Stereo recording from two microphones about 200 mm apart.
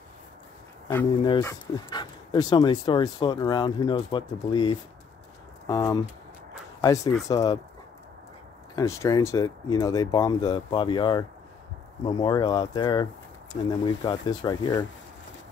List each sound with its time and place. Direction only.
1.2 s speech: 20° left (ahead or behind)
8.7 s speech: 15° left (ahead or behind)